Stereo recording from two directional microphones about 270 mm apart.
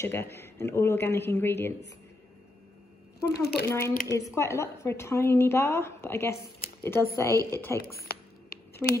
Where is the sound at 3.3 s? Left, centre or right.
Left.